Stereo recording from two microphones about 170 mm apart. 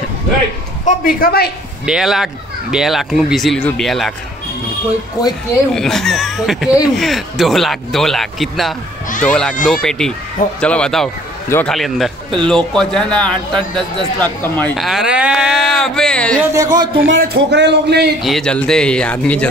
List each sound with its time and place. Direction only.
0.8 s a man's voice: 55° left (ahead or behind)
1.9 s speech: 5° right (ahead or behind)
5.2 s speech: 20° left (ahead or behind)
5.8 s speech: centre (ahead or behind)
11.7 s speech: centre (ahead or behind)
16.5 s speech: 20° right (ahead or behind)
17.0 s speech: 70° right (ahead or behind)
18.2 s speech: 5° left (ahead or behind)